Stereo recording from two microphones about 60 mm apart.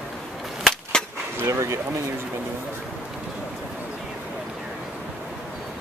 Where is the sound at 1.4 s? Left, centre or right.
Right.